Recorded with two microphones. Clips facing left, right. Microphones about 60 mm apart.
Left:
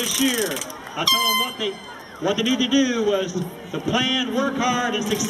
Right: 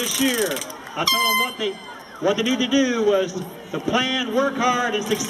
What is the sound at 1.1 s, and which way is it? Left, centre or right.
A man's voice, right.